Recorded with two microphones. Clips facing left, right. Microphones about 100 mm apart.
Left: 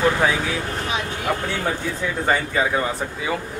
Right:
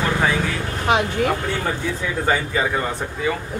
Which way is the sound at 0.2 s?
5° left (ahead or behind).